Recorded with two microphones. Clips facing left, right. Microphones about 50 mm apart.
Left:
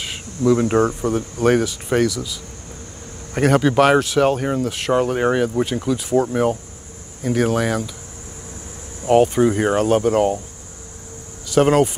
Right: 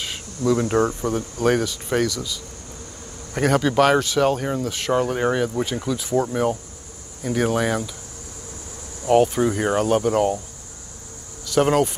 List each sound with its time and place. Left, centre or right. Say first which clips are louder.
0.5 s speech: left 3 dB; centre
3.3 s speech: left 3 dB; centre
9.1 s speech: left 3 dB; centre
11.4 s speech: left 3 dB; centre